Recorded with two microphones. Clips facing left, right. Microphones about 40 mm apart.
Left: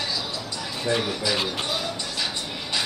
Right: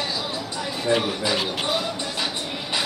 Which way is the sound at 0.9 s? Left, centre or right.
Right.